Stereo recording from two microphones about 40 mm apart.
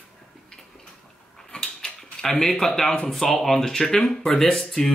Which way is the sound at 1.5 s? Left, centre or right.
Centre.